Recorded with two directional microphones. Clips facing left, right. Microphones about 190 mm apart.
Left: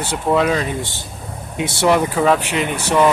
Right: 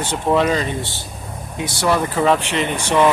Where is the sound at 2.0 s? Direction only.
5° left (ahead or behind).